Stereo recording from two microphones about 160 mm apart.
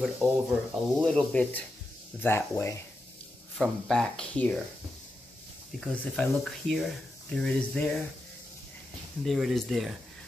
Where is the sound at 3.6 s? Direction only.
5° left (ahead or behind).